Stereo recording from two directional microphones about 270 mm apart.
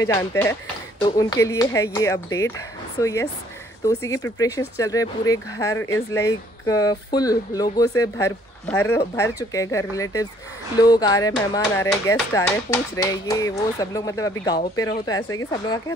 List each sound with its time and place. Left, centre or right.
0.0 s speech: centre